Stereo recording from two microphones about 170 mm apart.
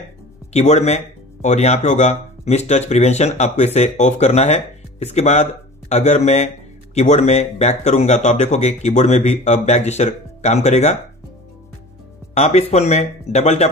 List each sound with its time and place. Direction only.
0.5 s speech: 40° left (ahead or behind)
12.4 s speech: 40° left (ahead or behind)